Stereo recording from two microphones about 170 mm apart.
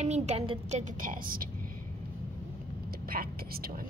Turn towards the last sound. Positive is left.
turn(degrees=-60)  # may be behind; listen again after turning